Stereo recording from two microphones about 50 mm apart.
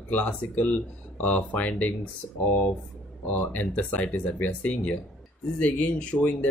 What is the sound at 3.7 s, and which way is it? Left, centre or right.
Speech, left.